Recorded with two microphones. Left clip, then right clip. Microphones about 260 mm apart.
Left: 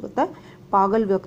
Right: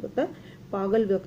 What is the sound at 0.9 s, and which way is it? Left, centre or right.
Speech, centre.